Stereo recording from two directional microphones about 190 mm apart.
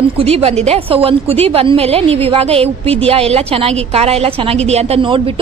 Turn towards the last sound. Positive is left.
turn(degrees=-30)  # may be behind; listen again after turning